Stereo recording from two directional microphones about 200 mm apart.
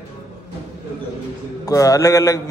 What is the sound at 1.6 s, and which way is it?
Speech, 15° left (ahead or behind).